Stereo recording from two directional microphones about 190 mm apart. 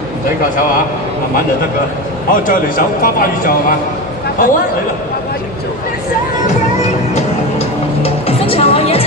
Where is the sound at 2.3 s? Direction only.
45° left (ahead or behind).